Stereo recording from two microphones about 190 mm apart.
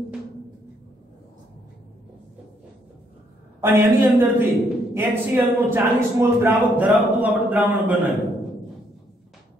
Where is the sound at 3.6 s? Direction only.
10° right (ahead or behind).